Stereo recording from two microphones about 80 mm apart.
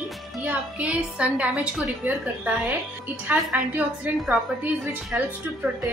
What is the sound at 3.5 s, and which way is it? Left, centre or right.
A woman's voice, centre.